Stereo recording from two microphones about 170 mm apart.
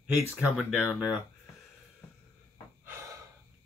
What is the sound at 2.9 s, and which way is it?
Breathing, 15° right (ahead or behind).